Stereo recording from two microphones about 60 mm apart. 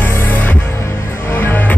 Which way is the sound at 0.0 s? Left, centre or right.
Left.